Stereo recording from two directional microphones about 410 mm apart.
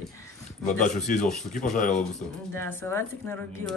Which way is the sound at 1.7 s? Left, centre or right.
Centre.